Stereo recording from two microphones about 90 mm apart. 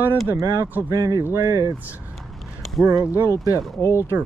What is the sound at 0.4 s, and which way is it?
Speech, 40° right (ahead or behind).